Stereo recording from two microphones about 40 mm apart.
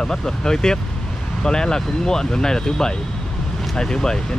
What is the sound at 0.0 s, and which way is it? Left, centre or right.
Speech, centre.